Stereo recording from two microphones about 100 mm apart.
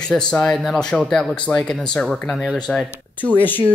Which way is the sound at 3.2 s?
20° left (ahead or behind).